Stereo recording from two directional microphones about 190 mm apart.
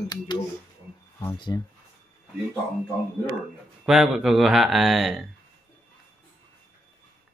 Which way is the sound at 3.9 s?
Centre (ahead or behind).